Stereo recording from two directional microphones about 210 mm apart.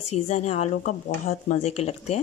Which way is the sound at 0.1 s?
30° left (ahead or behind).